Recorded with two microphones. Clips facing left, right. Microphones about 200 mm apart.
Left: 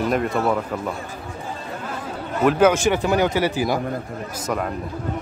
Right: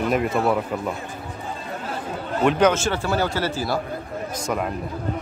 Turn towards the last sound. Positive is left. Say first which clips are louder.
# even
turn(degrees=-5)  # may be behind; listen again after turning